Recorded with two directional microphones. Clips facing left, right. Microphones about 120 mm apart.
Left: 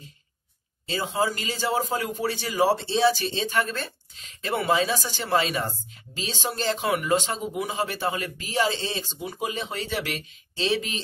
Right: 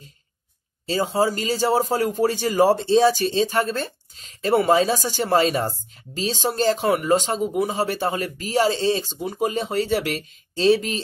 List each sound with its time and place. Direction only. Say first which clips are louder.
0.8 s speech: right 5 dB; 40° right (ahead or behind)